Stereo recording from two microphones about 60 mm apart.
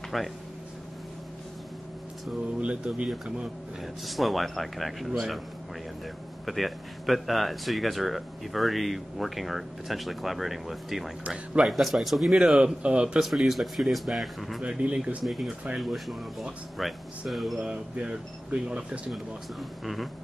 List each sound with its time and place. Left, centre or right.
0.1 s speech: centre
2.6 s speech: centre
3.8 s speech: centre
6.4 s speech: centre
11.2 s speech: centre
11.7 s speech: centre
12.5 s speech: centre
13.2 s speech: centre
14.6 s speech: centre
15.2 s speech: centre
17.6 s speech: centre
19.8 s speech: centre